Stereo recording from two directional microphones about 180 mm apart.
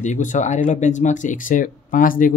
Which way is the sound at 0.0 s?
40° left (ahead or behind).